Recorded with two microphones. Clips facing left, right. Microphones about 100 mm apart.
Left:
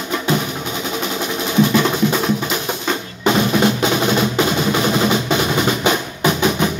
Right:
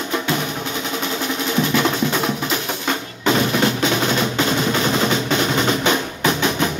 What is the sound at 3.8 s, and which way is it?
Music, 15° left (ahead or behind).